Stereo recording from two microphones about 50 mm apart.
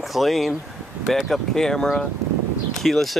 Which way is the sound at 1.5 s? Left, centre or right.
Centre.